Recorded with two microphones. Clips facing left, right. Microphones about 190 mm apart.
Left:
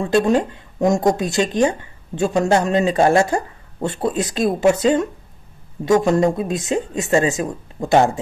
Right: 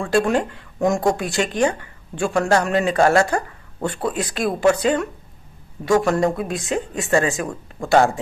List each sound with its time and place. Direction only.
0.0 s speech: 20° left (ahead or behind)